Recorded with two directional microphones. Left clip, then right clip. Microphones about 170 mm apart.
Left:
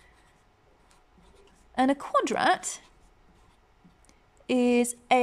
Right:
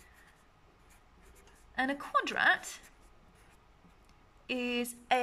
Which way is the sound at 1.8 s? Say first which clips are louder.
Left 7 dB; 35° left (ahead or behind).